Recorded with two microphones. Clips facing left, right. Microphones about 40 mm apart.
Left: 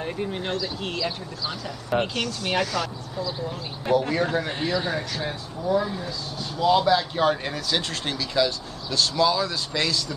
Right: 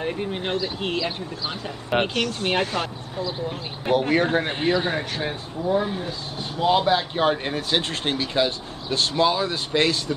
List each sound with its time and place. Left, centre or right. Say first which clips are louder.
0.0 s speech: right 2 dB; right
1.9 s speech: right 2 dB; right